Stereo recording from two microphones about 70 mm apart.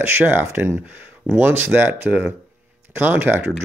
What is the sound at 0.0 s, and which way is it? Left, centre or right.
Speech, right.